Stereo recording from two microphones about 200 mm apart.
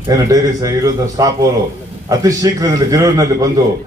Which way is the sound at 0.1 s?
15° right (ahead or behind).